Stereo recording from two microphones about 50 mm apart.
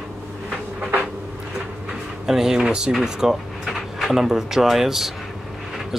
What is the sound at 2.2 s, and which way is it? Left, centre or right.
Speech, centre.